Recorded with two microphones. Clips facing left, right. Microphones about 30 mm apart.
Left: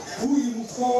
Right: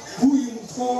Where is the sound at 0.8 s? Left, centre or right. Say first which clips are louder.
Left 1 dB; centre.